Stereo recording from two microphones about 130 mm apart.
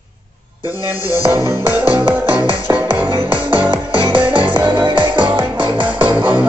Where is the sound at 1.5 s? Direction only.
20° right (ahead or behind).